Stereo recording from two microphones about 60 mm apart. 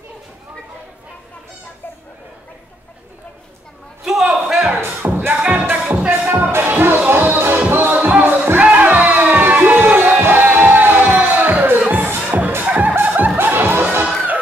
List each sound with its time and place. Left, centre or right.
4.0 s a sound: centre
4.5 s music: centre
4.7 s music: right
5.3 s music: right
8.5 s a sound: right
10.2 s music: right
13.0 s snicker: right
13.4 s music: right